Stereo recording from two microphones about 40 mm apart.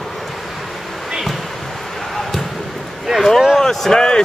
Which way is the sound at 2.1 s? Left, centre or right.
Centre.